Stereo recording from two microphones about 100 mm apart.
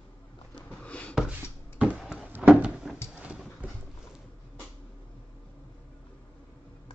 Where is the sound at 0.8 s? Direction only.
15° left (ahead or behind).